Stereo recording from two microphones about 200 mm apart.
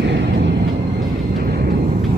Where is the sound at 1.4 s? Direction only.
50° right (ahead or behind).